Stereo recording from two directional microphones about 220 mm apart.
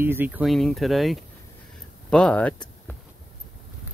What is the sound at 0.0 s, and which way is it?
Speech, 10° right (ahead or behind).